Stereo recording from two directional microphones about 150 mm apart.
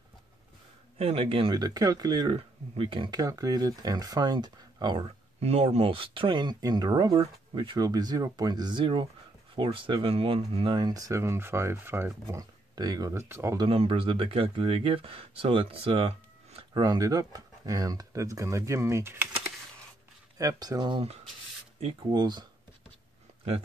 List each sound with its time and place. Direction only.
0.9 s speech: 40° right (ahead or behind)
1.5 s speech: 25° right (ahead or behind)
13.7 s speech: 35° right (ahead or behind)
16.7 s speech: 25° right (ahead or behind)
20.3 s speech: 25° right (ahead or behind)